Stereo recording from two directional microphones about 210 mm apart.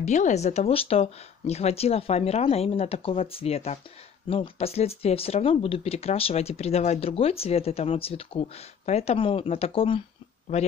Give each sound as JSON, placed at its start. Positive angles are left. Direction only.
{"t": 0.0, "sound": "speech", "side_deg": 35}